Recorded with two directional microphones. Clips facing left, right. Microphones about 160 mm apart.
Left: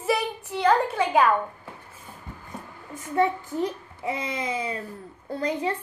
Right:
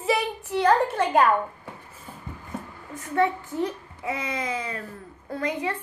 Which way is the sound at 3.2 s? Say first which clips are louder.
Even; 20° left (ahead or behind).